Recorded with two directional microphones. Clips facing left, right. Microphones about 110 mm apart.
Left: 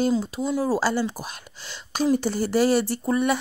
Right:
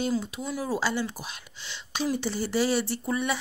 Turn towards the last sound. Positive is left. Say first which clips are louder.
# left 6 dB
turn(degrees=45)  # may be behind; listen again after turning